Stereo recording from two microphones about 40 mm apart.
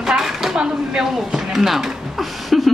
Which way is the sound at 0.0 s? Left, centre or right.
Centre.